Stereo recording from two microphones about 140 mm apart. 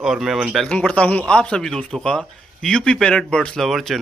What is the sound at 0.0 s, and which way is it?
Speech, 5° right (ahead or behind).